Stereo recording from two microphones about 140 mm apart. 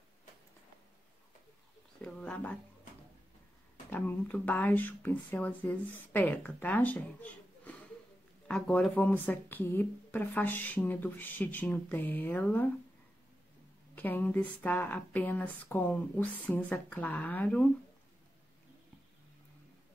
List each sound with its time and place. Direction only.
2.0 s speech: 5° left (ahead or behind)
3.9 s speech: 10° left (ahead or behind)
13.9 s speech: 10° left (ahead or behind)